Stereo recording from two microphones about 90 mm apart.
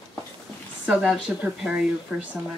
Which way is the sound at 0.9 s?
10° right (ahead or behind).